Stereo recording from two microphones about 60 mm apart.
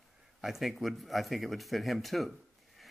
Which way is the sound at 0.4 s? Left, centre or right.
Centre.